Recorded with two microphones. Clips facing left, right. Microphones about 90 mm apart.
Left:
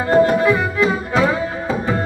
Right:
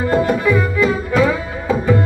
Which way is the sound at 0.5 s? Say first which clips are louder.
Right 1 dB; 30° left (ahead or behind).